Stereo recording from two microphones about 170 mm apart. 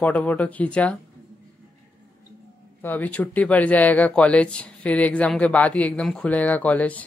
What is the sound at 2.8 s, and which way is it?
Speech, 10° left (ahead or behind).